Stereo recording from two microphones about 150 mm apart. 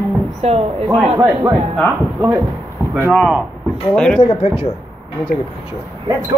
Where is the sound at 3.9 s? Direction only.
5° left (ahead or behind).